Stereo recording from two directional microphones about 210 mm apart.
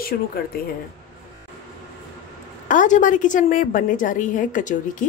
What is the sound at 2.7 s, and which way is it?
A woman's voice, 40° left (ahead or behind).